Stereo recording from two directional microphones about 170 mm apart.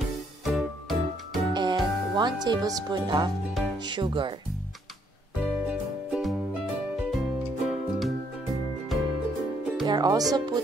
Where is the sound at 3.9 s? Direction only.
30° right (ahead or behind).